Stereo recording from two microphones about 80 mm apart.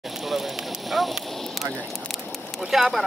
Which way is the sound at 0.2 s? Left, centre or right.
Centre.